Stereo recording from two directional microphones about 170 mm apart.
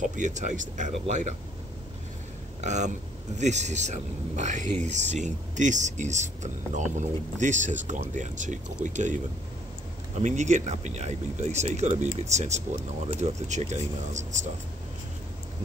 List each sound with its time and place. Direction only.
0.0 s speech: 45° right (ahead or behind)
2.6 s speech: 45° right (ahead or behind)